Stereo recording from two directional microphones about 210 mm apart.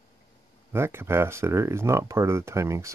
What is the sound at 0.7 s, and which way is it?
Speech, 10° right (ahead or behind).